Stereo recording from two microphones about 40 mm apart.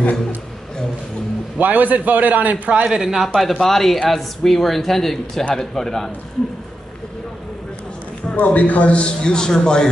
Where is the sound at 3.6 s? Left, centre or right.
Centre.